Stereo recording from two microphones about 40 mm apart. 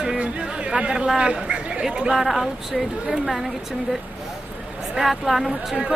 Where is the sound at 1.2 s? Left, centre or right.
Right.